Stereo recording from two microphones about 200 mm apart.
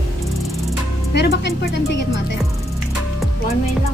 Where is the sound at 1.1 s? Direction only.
60° left (ahead or behind).